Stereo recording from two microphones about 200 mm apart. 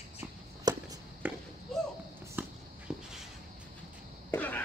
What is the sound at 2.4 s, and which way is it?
Walk, 10° right (ahead or behind).